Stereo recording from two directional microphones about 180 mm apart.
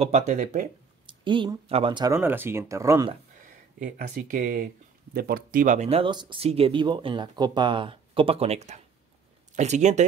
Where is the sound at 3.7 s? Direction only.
45° right (ahead or behind).